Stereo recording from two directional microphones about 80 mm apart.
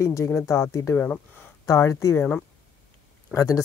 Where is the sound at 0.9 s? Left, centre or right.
Left.